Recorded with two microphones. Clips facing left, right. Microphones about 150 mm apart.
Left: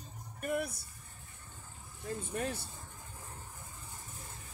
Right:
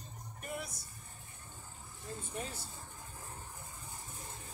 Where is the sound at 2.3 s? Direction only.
60° left (ahead or behind).